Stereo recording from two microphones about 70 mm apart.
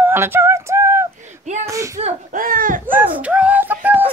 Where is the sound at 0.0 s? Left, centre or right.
Right.